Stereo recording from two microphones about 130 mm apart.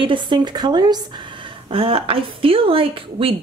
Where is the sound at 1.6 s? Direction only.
45° right (ahead or behind).